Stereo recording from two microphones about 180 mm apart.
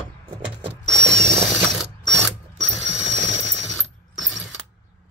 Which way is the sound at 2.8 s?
80° right.